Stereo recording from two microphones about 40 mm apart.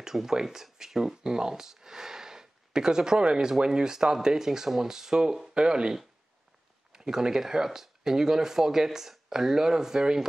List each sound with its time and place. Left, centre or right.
0.0 s speech: centre